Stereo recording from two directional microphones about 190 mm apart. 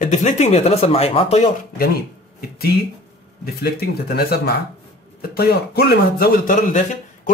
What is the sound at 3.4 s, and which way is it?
Speech, 55° left (ahead or behind).